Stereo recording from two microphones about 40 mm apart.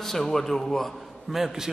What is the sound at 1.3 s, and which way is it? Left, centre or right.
Speech, centre.